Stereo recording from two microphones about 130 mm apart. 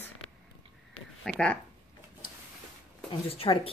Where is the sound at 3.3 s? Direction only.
45° left (ahead or behind).